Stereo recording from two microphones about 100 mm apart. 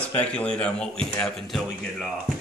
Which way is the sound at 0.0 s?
10° left (ahead or behind).